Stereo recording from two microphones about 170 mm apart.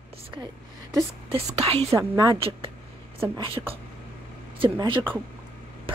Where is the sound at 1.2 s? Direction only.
35° right (ahead or behind).